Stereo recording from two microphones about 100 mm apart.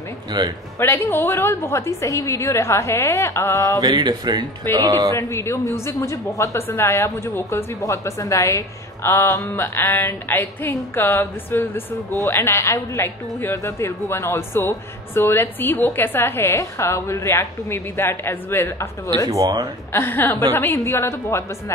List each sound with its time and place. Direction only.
0.3 s speech: 40° right (ahead or behind)
0.7 s a woman's voice: 20° left (ahead or behind)
3.8 s speech: 45° right (ahead or behind)
5.1 s a woman's voice: 30° left (ahead or behind)
19.2 s speech: 40° right (ahead or behind)
19.9 s a woman's voice: 20° left (ahead or behind)